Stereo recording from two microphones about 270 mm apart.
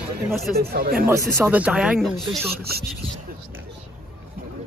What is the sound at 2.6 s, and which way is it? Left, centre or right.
Speech, right.